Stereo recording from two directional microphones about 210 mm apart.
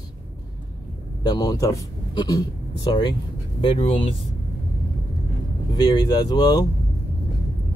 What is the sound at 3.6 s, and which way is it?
Speech, 25° left (ahead or behind).